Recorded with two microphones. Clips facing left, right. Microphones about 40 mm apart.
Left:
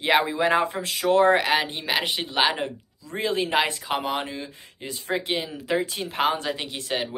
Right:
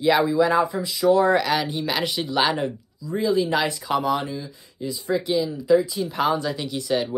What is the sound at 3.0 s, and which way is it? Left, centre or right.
Speech, left.